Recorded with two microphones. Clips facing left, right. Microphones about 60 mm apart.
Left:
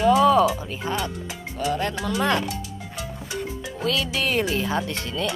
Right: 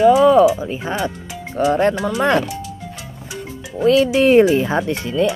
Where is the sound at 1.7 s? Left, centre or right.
Right.